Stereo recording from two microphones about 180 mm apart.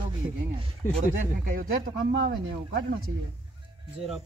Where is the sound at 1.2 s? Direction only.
50° right (ahead or behind).